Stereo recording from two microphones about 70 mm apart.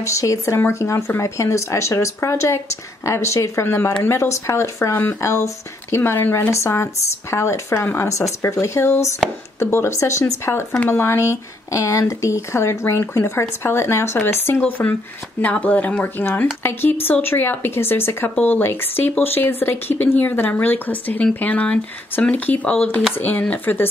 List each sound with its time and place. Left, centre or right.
0.0 s speech: left
3.6 s speech: left
6.5 s speech: left
8.1 s speech: left